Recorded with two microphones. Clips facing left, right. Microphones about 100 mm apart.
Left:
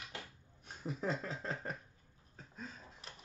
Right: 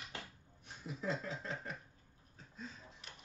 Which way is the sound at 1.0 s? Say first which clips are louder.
Even; 40° left (ahead or behind).